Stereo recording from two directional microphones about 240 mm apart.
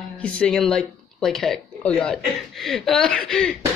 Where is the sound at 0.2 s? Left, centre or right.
Centre.